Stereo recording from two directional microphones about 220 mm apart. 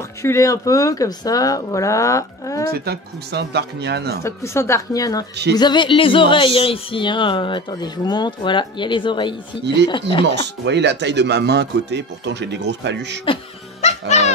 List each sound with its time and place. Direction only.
0.2 s speech: 15° left (ahead or behind)
2.7 s speech: 45° right (ahead or behind)
4.2 s speech: 10° left (ahead or behind)
5.3 s speech: 50° right (ahead or behind)
5.6 s speech: 20° left (ahead or behind)
10.2 s speech: 50° right (ahead or behind)
13.2 s cat: 25° left (ahead or behind)